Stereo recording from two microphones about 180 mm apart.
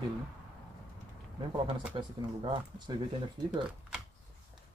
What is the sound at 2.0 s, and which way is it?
Speech, 30° right (ahead or behind).